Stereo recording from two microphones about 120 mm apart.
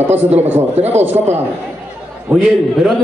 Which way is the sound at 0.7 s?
65° right (ahead or behind).